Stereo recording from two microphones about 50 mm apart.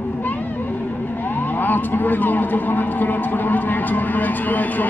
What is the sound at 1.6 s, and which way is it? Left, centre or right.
Speech, left.